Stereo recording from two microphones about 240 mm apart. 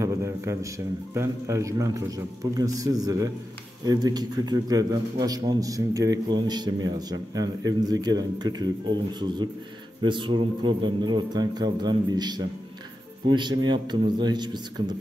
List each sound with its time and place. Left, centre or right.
0.0 s a man's voice: centre
10.0 s a man's voice: centre